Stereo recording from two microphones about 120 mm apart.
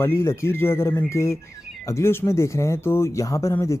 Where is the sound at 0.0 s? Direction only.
20° left (ahead or behind).